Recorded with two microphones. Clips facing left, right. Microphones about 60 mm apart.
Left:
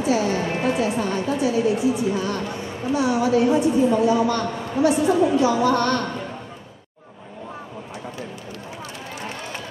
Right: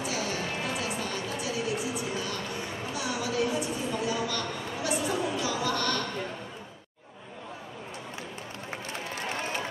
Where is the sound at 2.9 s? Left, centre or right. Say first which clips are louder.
Left 11 dB; left.